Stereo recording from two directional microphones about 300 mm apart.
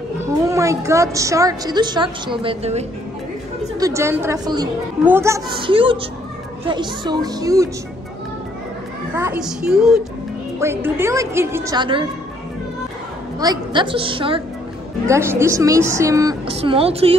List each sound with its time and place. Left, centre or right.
0.5 s a woman's voice: centre
3.8 s a woman's voice: centre
9.1 s a woman's voice: centre
13.4 s a woman's voice: centre